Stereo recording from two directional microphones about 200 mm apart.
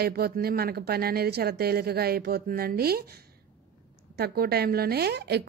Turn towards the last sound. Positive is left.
turn(degrees=-55)  # may be behind; listen again after turning